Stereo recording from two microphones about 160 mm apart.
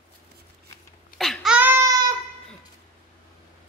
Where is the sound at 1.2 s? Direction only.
Centre (ahead or behind).